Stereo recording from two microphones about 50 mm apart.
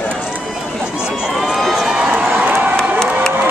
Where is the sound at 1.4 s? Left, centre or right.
Centre.